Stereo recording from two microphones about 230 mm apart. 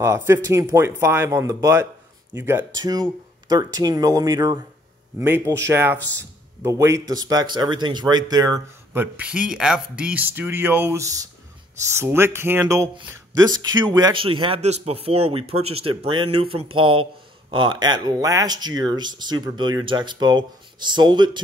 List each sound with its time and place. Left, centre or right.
0.0 s speech: centre